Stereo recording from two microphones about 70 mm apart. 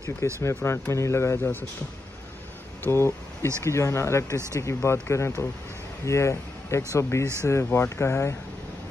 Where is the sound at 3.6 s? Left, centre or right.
Left.